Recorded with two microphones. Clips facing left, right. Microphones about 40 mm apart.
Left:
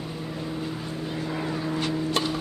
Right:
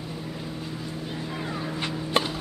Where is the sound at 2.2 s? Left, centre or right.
Right.